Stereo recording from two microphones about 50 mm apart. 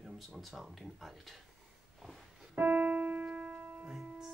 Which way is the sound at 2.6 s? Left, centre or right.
Right.